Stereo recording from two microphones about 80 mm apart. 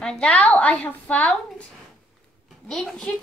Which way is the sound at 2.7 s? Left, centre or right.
Centre.